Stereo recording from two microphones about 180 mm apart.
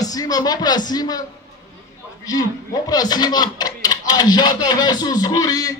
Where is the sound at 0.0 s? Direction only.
20° left (ahead or behind).